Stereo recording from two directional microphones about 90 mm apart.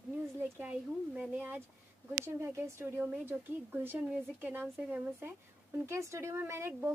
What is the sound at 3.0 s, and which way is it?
Speech, 20° right (ahead or behind).